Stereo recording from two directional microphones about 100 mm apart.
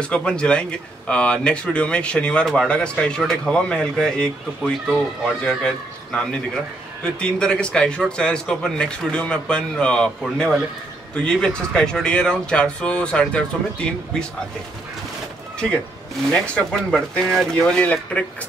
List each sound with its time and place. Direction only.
0.0 s a man's voice: 10° left (ahead or behind)
16.3 s speech: 10° left (ahead or behind)